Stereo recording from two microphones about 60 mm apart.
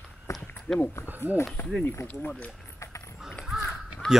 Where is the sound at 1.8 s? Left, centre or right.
Left.